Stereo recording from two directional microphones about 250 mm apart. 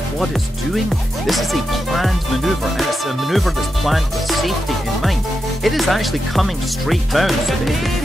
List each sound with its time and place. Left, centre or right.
1.2 s music: centre
5.6 s music: centre